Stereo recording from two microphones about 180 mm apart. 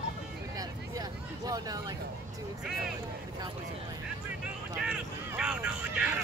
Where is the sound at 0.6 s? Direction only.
20° right (ahead or behind).